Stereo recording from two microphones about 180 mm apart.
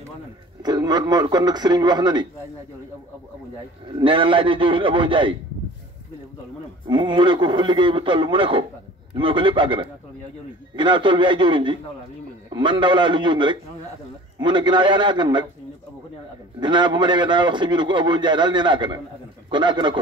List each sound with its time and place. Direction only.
0.7 s a man's voice: 25° right (ahead or behind)
4.0 s a man's voice: 30° right (ahead or behind)
6.9 s a man's voice: 25° right (ahead or behind)
16.5 s a man's voice: 25° right (ahead or behind)